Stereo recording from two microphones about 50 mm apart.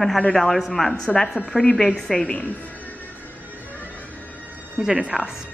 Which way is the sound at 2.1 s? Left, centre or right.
Left.